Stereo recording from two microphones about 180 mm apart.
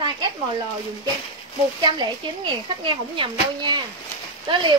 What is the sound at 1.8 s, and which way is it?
Speech, 25° right (ahead or behind).